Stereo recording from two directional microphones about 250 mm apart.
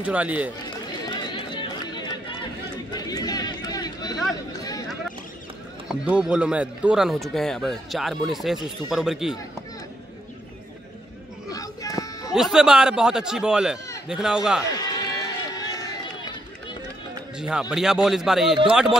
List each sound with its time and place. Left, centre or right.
0.0 s speech: centre
1.0 s run: centre
5.9 s speech: centre
11.5 s a sound: centre
12.3 s speech: centre
14.8 s run: centre
17.4 s speech: centre